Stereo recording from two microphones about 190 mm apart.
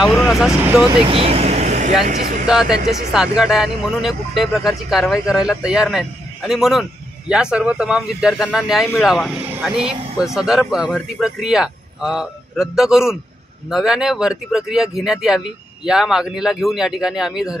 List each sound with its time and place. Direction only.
0.2 s vehicle: centre (ahead or behind)
0.7 s speech: 5° right (ahead or behind)
1.0 s speech: 30° right (ahead or behind); by 2.4 s 45° right (ahead or behind)
2.4 s speech: 5° right (ahead or behind)